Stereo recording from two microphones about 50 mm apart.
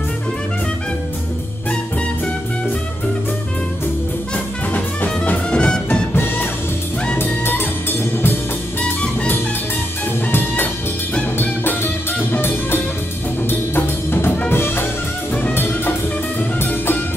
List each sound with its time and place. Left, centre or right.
4.7 s music: left
5.5 s music: centre
6.1 s music: left
10.2 s music: left